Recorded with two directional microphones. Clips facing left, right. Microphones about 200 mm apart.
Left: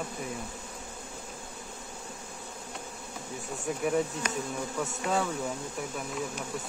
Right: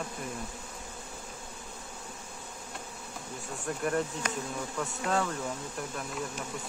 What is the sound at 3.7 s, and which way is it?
Speech, 5° left (ahead or behind).